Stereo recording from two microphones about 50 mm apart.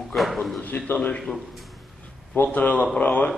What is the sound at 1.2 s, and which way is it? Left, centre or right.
Speech, centre.